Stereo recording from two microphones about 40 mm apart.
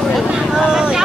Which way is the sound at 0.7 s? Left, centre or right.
Centre.